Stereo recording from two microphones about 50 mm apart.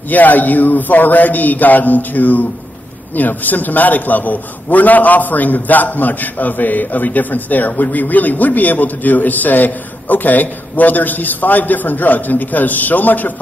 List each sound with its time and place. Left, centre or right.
0.1 s a man's voice: left